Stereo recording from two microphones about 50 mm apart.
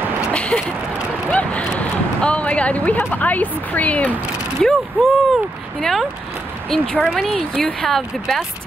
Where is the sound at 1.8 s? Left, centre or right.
Left.